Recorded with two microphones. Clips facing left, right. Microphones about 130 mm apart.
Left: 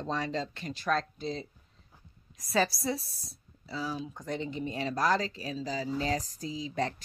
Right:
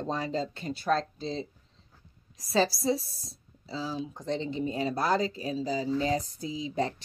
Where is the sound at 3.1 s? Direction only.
Centre (ahead or behind).